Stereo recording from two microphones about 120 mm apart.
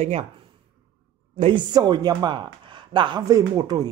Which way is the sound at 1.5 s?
35° right (ahead or behind).